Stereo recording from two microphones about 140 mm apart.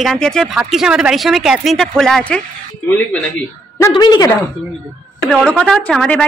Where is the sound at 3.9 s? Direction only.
30° left (ahead or behind).